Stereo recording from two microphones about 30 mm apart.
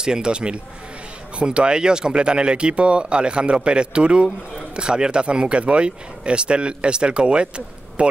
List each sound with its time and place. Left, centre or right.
0.0 s speech: right
5.2 s speech: right